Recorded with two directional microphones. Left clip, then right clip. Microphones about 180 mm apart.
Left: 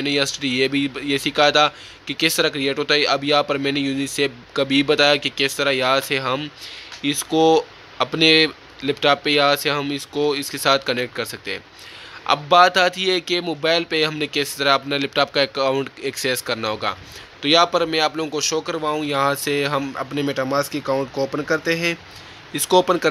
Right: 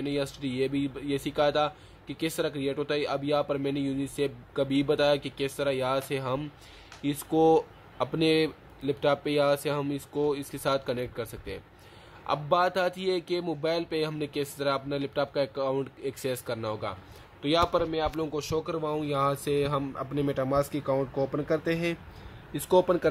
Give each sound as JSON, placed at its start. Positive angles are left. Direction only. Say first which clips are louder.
{"t": 0.0, "sound": "speech", "louder": "left 11 dB", "side_deg": 5}
{"t": 18.1, "sound": "speech", "louder": "left 8 dB", "side_deg": 0}
{"t": 21.0, "sound": "speech", "louder": "left 6 dB", "side_deg": 20}
{"t": 21.6, "sound": "speech", "louder": "left 9 dB", "side_deg": 0}